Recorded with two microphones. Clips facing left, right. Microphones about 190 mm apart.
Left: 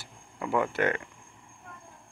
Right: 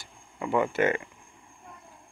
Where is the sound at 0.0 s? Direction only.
Centre (ahead or behind).